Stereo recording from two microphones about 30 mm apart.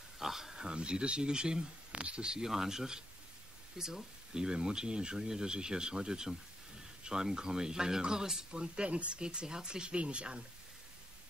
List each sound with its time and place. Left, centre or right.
0.2 s speech: centre
0.6 s speech: right
1.9 s a sound: right
2.4 s speech: centre
8.7 s speech: right